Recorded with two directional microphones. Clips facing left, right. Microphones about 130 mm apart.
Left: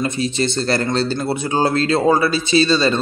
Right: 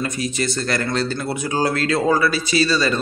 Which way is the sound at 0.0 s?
25° left (ahead or behind).